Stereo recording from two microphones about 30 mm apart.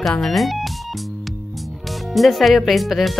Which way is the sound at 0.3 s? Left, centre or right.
Centre.